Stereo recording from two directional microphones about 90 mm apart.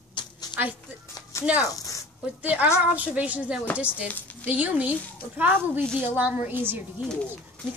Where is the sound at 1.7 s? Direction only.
40° left (ahead or behind).